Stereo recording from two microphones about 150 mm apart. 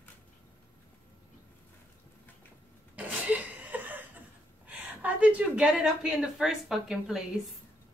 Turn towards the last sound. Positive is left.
turn(degrees=0)  # may be behind; listen again after turning